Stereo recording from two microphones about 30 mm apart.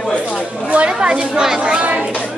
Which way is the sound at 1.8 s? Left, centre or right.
Right.